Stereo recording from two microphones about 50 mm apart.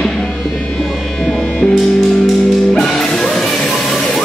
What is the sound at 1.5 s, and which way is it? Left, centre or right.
Music, left.